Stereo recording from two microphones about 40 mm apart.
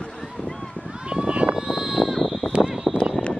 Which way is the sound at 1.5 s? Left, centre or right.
Centre.